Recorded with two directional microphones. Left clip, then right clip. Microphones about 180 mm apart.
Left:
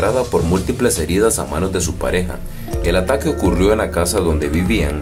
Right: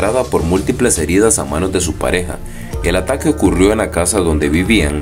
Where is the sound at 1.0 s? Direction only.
15° right (ahead or behind).